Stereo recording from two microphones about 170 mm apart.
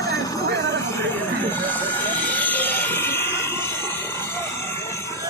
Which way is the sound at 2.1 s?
10° left (ahead or behind).